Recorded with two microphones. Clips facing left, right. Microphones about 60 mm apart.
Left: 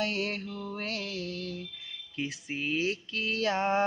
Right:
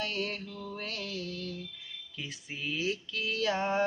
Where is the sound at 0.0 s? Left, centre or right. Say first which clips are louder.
Left 3 dB; left.